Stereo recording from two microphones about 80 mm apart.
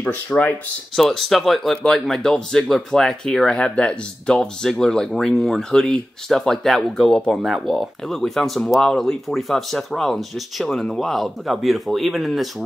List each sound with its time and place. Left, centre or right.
0.0 s speech: centre
0.9 s speech: centre